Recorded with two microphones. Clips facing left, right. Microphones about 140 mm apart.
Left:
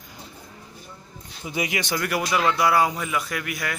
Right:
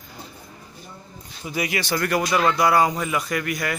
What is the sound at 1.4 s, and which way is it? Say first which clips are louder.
A man's voice: right 1 dB; 20° left (ahead or behind).